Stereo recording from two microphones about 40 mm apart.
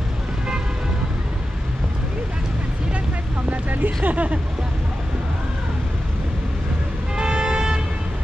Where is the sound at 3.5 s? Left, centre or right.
Right.